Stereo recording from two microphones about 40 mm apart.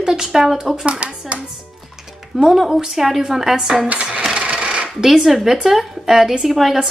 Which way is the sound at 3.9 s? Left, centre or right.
Right.